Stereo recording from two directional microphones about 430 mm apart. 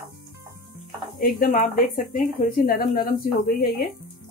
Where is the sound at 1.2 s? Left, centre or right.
Centre.